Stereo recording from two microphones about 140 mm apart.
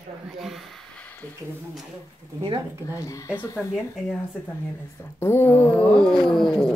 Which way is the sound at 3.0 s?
20° left (ahead or behind).